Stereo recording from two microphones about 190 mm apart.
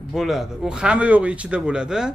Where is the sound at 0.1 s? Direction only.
Centre (ahead or behind).